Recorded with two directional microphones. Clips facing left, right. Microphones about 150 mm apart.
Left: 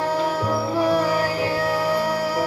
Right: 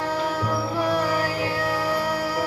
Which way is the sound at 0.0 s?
35° left (ahead or behind).